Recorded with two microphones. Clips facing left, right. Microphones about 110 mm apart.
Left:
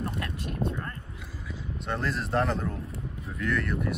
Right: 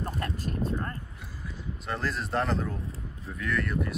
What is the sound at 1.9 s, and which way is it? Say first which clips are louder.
Speech: left 1 dB; centre (ahead or behind).